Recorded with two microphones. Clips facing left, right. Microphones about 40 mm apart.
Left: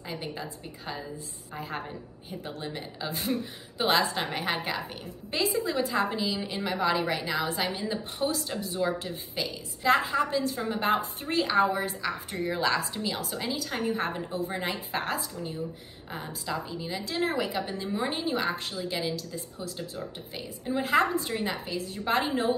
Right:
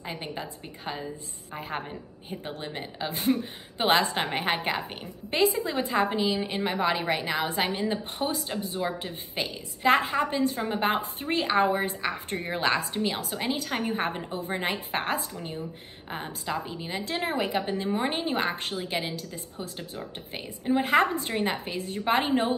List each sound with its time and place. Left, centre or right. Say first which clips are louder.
0.0 s a woman's voice: right 1 dB; right
2.4 s a woman's voice: right 1 dB; right
9.3 s a woman's voice: right 3 dB; right
16.4 s a woman's voice: even; right